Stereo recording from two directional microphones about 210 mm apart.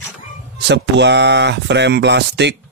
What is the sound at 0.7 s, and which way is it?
Speech, 55° right (ahead or behind).